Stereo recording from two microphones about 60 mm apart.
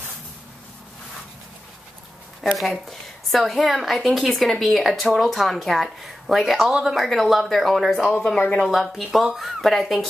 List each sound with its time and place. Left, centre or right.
2.4 s a woman's voice: centre